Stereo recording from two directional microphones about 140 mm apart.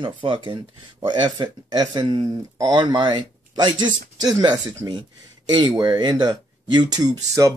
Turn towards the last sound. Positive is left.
turn(degrees=-25)  # may be behind; listen again after turning